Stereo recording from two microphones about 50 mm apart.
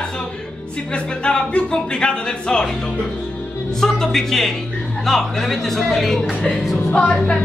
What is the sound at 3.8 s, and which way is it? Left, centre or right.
Speech, centre.